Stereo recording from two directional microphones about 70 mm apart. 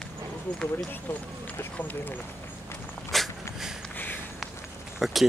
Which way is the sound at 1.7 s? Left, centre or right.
Left.